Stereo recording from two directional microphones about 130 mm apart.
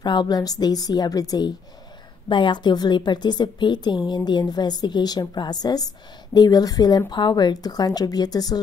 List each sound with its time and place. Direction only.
0.0 s a woman's voice: 35° left (ahead or behind)